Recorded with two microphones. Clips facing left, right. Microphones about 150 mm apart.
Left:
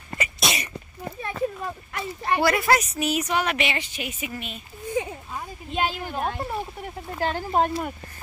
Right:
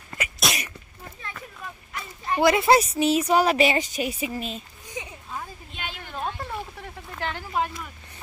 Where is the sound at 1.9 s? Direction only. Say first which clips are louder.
Left 3 dB; 65° left (ahead or behind).